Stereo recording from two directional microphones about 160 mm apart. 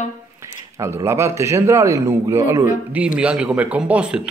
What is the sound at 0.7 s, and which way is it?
Speech, 20° right (ahead or behind).